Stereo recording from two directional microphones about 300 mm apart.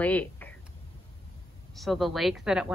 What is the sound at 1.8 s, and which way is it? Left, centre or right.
Speech, centre.